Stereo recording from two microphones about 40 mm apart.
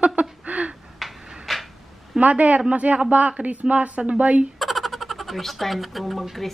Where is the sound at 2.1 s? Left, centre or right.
Right.